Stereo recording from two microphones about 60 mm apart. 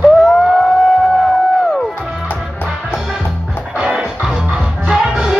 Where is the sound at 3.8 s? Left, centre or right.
Centre.